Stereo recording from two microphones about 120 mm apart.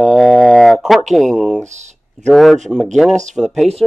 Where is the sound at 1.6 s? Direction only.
75° right (ahead or behind).